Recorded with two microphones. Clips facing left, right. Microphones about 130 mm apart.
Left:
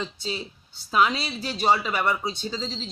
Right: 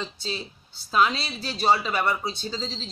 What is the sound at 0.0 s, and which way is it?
A man's voice, 15° left (ahead or behind).